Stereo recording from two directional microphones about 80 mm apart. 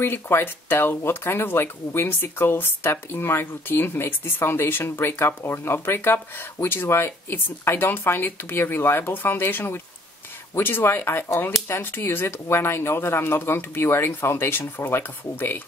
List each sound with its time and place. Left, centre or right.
0.0 s speech: left